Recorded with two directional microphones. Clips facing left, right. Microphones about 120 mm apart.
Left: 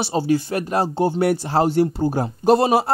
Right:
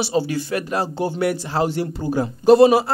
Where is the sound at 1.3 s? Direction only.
40° left (ahead or behind).